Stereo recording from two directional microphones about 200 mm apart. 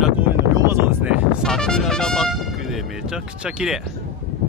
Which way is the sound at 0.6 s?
15° right (ahead or behind).